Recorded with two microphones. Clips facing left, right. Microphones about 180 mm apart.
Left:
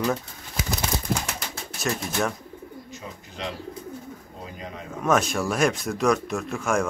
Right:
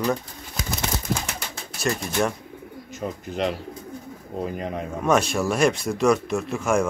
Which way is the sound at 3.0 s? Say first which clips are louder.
Right 12 dB; 60° right (ahead or behind).